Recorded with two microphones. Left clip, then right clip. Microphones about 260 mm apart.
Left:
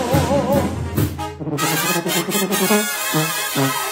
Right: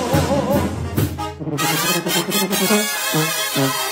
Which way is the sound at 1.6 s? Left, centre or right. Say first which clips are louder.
Right 1 dB; centre.